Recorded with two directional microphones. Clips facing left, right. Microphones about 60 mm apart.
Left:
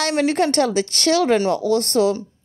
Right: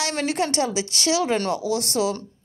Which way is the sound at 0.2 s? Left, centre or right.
Left.